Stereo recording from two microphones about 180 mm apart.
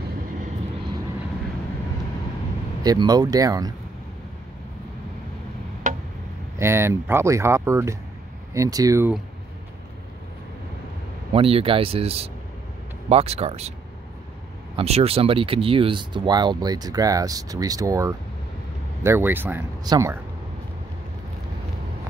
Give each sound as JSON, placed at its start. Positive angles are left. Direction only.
{"t": 2.8, "sound": "speech", "side_deg": -20}
{"t": 5.9, "sound": "tick", "side_deg": -45}
{"t": 6.6, "sound": "speech", "side_deg": -15}
{"t": 11.3, "sound": "speech", "side_deg": -30}
{"t": 14.8, "sound": "speech", "side_deg": -35}